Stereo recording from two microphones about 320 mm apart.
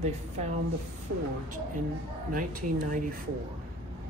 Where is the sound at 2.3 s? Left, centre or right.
Right.